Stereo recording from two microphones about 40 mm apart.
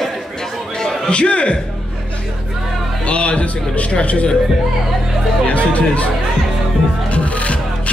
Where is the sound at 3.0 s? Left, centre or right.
Left.